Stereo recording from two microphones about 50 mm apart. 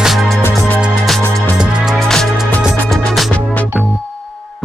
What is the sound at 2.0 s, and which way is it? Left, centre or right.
Music, centre.